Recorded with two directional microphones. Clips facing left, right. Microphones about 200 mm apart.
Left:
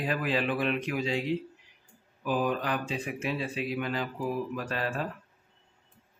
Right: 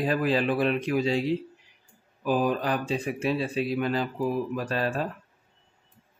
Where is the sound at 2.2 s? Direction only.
35° right (ahead or behind).